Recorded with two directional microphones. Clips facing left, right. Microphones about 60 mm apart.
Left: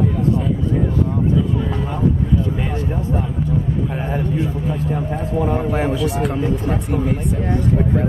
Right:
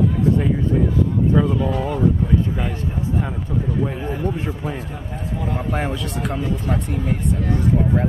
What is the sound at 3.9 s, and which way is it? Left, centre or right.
Speech, left.